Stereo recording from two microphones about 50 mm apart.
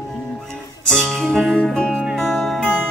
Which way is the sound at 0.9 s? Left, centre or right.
Centre.